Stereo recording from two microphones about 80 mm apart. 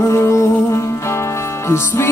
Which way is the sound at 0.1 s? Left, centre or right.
Left.